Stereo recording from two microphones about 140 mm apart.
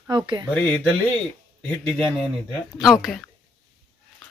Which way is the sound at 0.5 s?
10° left (ahead or behind).